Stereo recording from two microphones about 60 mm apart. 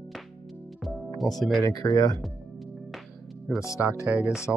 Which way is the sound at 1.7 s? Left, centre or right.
Left.